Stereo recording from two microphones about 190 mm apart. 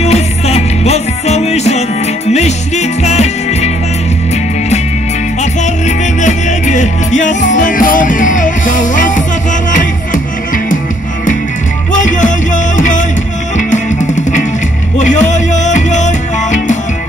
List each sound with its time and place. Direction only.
0.0 s music: 35° left (ahead or behind)
5.4 s music: 40° left (ahead or behind)
11.9 s music: 40° left (ahead or behind)